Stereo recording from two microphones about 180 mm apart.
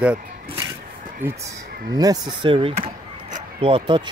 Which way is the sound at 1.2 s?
10° right (ahead or behind).